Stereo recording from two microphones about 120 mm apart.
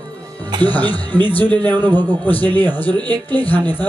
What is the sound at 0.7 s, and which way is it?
A man's voice, 15° left (ahead or behind).